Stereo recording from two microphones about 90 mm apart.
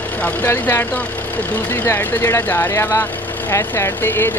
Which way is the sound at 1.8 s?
30° left (ahead or behind).